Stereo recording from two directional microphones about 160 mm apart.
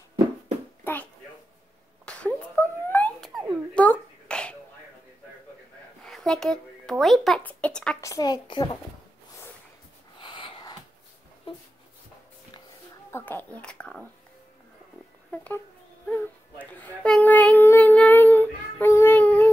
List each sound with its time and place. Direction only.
2.0 s a sound: 10° left (ahead or behind)
6.0 s speech: 5° left (ahead or behind)
8.0 s a woman's voice: 20° left (ahead or behind)
10.2 s wheeze: 30° left (ahead or behind)
13.1 s speech: 10° left (ahead or behind)
15.3 s speech: 10° left (ahead or behind)
16.1 s child singing: 10° left (ahead or behind)